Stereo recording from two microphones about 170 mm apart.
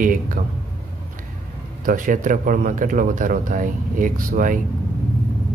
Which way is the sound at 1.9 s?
50° right (ahead or behind).